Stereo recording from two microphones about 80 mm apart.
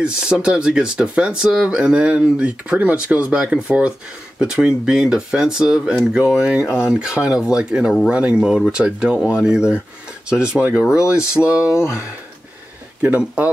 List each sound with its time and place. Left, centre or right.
0.0 s speech: centre
11.7 s speech: left
13.2 s speech: centre